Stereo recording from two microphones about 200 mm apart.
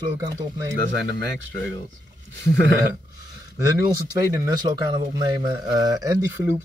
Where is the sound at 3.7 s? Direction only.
15° right (ahead or behind).